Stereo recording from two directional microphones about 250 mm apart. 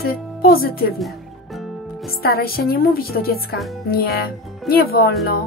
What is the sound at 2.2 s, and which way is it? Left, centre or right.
Speech, left.